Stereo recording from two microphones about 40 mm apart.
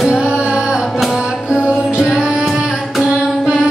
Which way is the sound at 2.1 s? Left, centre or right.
Centre.